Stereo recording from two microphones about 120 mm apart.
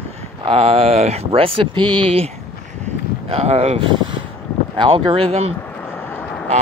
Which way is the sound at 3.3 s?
60° right (ahead or behind).